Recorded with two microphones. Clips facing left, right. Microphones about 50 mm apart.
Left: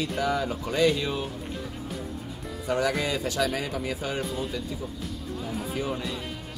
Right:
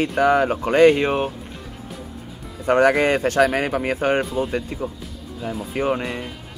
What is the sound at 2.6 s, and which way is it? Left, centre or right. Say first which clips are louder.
Speech: right 10 dB; right.